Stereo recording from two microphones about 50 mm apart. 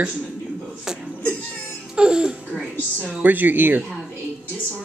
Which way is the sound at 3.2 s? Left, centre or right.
Right.